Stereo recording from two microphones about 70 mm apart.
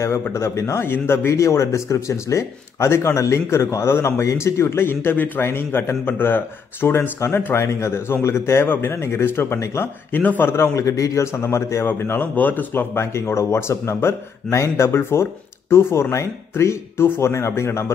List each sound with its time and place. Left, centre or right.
0.3 s a man's voice: left
0.8 s speech: left
10.8 s a man's voice: left